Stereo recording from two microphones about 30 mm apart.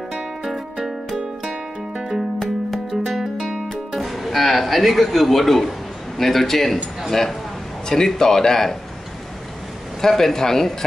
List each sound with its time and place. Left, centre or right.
2.9 s music: centre
3.9 s speech: centre
10.0 s speech: centre